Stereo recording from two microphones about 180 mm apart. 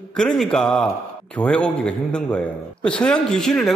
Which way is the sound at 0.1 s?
5° left (ahead or behind).